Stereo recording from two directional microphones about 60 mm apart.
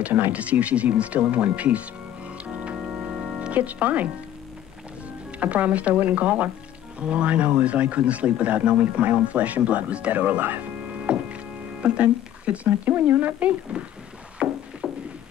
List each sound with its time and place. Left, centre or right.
0.0 s a man's voice: right
2.3 s music: right
5.4 s a man's voice: right
11.1 s hum: centre
11.8 s a man's voice: centre
14.8 s music: centre